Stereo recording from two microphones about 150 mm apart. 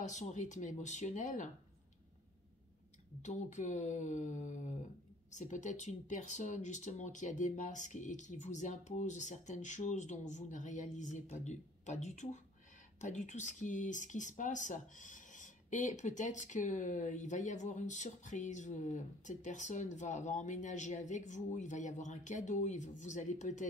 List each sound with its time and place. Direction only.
0.0 s speech: 50° left (ahead or behind)
3.2 s speech: 50° left (ahead or behind)